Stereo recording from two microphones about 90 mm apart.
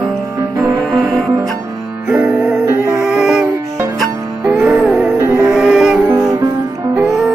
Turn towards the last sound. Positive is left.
turn(degrees=-10)  # may be behind; listen again after turning